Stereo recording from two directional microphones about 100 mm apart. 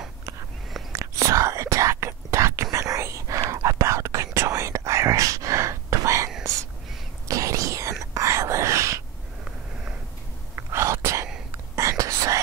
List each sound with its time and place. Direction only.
0.9 s whispering: 30° right (ahead or behind)
10.5 s whispering: 30° right (ahead or behind)